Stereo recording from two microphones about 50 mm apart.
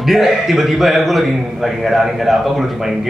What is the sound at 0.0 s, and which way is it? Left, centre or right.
A man's voice, centre.